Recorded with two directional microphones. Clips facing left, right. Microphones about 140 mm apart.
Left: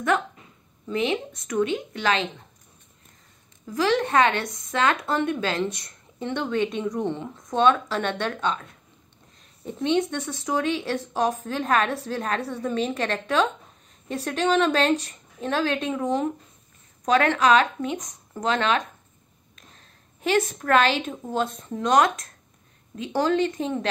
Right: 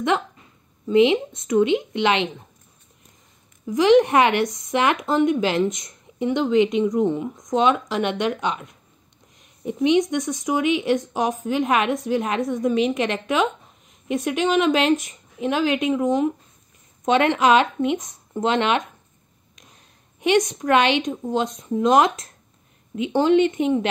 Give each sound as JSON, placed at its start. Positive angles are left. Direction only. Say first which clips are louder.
{"t": 0.8, "sound": "speech", "louder": "right 9 dB", "side_deg": -25}
{"t": 3.6, "sound": "speech", "louder": "right 8 dB", "side_deg": -20}
{"t": 20.3, "sound": "speech", "louder": "right 2 dB", "side_deg": -15}